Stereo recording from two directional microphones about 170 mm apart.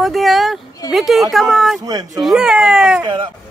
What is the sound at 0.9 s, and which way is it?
Speech, centre (ahead or behind).